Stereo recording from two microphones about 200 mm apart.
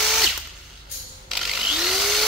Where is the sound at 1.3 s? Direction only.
Centre (ahead or behind).